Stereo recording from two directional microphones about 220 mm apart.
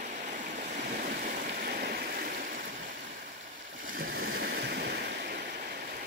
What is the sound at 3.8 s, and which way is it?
Waves, 40° right (ahead or behind).